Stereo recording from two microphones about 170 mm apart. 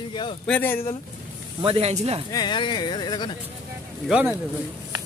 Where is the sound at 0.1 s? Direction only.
30° left (ahead or behind).